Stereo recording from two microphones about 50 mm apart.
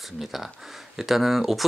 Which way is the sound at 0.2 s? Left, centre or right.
Centre.